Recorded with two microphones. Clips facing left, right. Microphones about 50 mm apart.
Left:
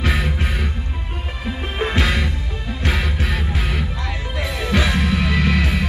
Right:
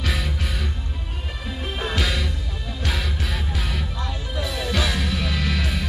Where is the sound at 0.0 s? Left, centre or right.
Left.